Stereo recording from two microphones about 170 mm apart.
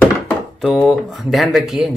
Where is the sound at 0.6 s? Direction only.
Centre (ahead or behind).